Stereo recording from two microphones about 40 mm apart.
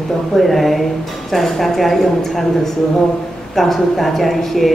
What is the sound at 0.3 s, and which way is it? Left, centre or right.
A woman's voice, centre.